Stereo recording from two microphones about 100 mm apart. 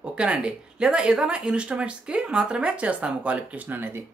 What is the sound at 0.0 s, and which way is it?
Speech, 10° right (ahead or behind).